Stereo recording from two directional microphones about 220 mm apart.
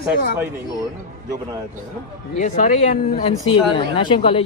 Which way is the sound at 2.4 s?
35° left (ahead or behind).